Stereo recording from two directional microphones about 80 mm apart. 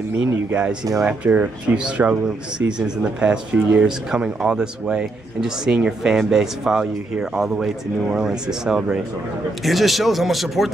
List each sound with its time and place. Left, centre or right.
0.5 s speech: centre
2.6 s speech: right
3.0 s speech: centre